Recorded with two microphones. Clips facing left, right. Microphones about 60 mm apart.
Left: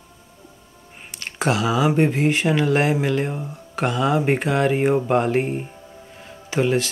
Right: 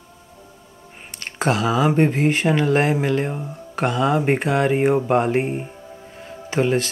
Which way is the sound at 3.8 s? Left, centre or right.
Right.